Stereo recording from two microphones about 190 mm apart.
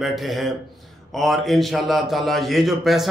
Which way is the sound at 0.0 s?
Centre (ahead or behind).